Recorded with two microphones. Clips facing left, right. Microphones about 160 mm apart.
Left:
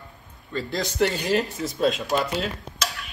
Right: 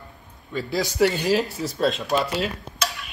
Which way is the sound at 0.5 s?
5° right (ahead or behind).